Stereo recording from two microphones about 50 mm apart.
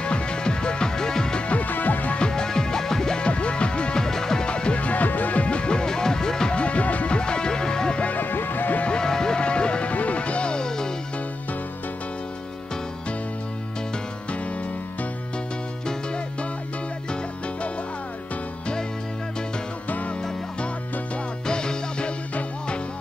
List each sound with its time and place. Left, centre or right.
0.0 s music: centre
1.5 s music: left
2.1 s music: centre
8.0 s music: left
8.8 s music: centre
21.5 s music: centre